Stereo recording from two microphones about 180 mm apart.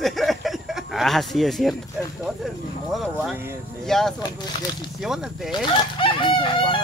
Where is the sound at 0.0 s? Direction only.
Centre (ahead or behind).